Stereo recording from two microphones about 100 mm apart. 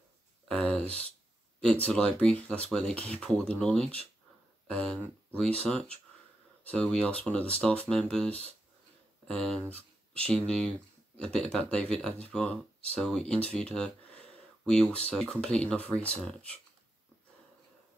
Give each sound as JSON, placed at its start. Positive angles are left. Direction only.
{"t": 0.5, "sound": "speech", "side_deg": 10}